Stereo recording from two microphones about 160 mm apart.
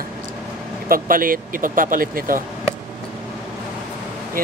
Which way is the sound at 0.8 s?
65° right (ahead or behind).